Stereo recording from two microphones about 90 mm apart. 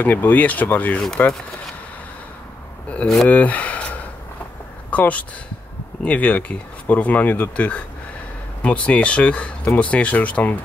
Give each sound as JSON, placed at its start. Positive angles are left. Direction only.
{"t": 0.0, "sound": "speech", "side_deg": 20}
{"t": 1.0, "sound": "speech", "side_deg": 5}
{"t": 3.3, "sound": "speech", "side_deg": 15}